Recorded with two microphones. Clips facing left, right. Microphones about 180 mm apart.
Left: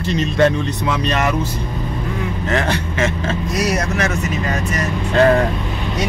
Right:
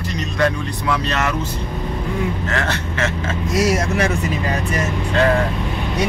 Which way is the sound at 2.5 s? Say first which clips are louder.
Left 3 dB; 15° left (ahead or behind).